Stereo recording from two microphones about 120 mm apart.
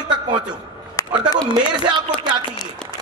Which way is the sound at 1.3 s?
40° right (ahead or behind).